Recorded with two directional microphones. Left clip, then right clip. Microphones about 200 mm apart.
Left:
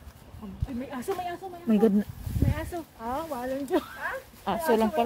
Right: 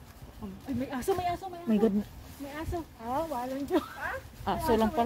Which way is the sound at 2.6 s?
55° left (ahead or behind).